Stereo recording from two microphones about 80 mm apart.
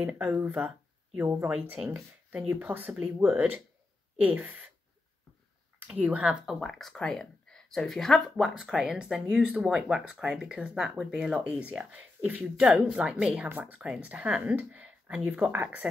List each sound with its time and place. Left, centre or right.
0.0 s speech: right
5.8 s speech: centre
6.4 s speech: centre
8.5 s speech: centre
13.5 s speech: right
13.7 s speech: centre